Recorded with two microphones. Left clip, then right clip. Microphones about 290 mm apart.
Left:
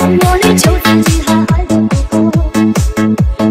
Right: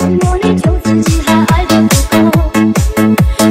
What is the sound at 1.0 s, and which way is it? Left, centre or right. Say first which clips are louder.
Music: right 1 dB; centre.